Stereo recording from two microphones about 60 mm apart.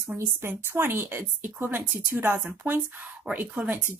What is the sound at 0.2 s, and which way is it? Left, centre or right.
A woman's voice, right.